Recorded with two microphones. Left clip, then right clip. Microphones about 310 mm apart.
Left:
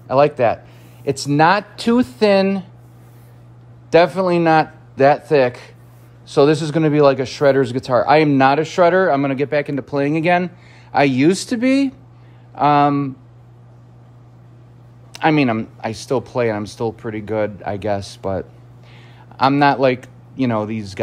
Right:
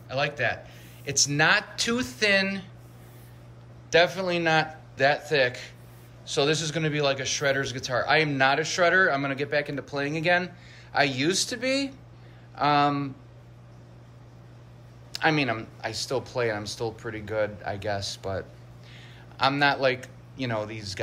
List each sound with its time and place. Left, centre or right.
0.1 s speech: centre
3.9 s speech: centre
15.1 s a man's voice: centre